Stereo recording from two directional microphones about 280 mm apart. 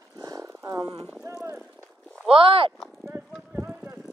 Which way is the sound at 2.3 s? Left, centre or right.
Centre.